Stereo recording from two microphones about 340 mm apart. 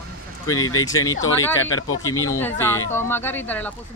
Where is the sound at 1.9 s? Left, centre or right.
Left.